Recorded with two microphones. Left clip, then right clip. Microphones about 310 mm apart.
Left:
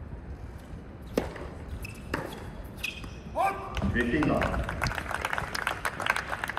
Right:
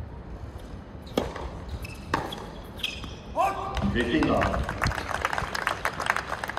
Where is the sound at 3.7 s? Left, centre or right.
Right.